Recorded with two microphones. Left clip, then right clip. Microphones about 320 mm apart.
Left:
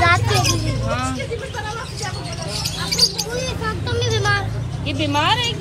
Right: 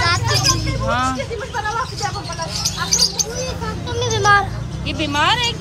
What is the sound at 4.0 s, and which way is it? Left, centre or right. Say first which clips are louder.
Vehicle: right 7 dB; right.